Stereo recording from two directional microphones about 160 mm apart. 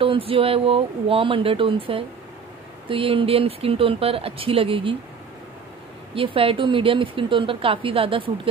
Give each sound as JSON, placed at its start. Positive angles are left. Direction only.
{"t": 0.0, "sound": "a woman's voice", "side_deg": -35}
{"t": 6.1, "sound": "a woman's voice", "side_deg": -35}